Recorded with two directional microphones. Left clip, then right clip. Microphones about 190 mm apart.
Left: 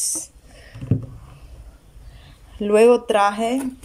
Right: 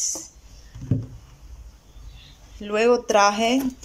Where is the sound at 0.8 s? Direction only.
5° left (ahead or behind).